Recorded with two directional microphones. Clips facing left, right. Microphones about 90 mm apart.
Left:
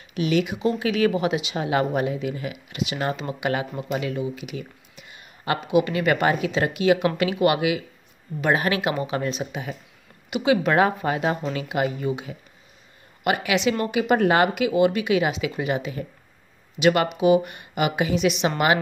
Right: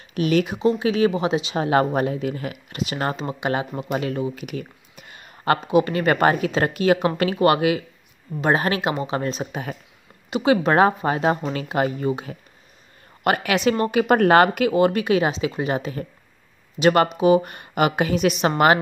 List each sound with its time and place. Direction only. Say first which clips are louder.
0.1 s speech: right 2 dB; 45° right (ahead or behind)
0.6 s a woman's voice: right 3 dB; 30° right (ahead or behind)
3.9 s a sound: right 2 dB; 40° right (ahead or behind)
5.6 s a woman's voice: right 2 dB; 35° right (ahead or behind)